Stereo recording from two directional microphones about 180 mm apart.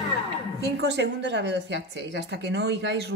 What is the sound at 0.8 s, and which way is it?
Speech, 75° right (ahead or behind).